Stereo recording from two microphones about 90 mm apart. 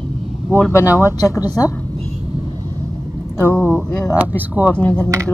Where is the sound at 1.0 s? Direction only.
30° left (ahead or behind).